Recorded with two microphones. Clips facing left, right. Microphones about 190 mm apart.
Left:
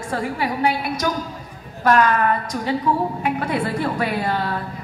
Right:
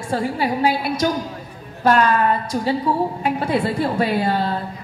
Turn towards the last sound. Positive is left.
turn(degrees=-30)  # may be behind; listen again after turning